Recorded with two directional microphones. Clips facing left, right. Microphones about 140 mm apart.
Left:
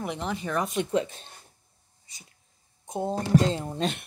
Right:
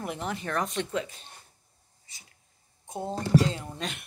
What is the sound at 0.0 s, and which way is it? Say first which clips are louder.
Speech: left 2 dB; centre (ahead or behind).